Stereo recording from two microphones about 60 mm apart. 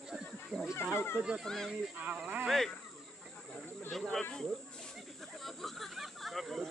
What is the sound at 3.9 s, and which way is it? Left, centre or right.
Speech, centre.